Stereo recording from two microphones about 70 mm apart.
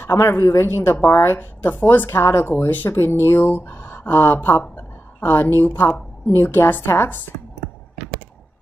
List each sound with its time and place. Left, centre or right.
0.0 s speech: left
2.0 s speech: left